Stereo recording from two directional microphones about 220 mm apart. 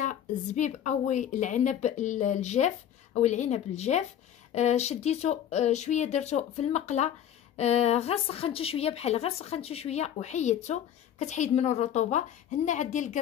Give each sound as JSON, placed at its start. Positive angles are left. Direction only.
{"t": 0.0, "sound": "a woman's voice", "side_deg": 35}